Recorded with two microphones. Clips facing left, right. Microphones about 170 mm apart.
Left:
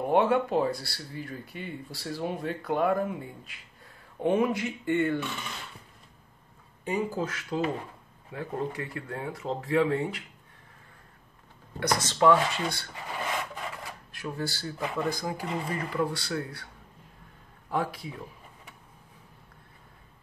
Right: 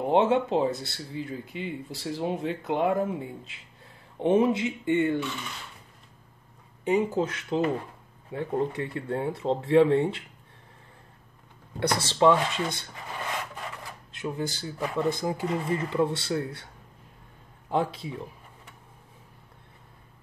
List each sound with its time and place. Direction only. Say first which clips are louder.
0.0 s speech: right 1 dB; 20° right (ahead or behind)
6.8 s speech: right 5 dB; 20° right (ahead or behind)
11.8 s speech: right 2 dB; 30° right (ahead or behind)
14.1 s speech: right 3 dB; 20° right (ahead or behind)
17.6 s a man's voice: right 3 dB; 25° right (ahead or behind)